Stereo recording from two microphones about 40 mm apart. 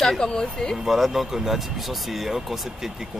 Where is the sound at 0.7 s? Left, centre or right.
Centre.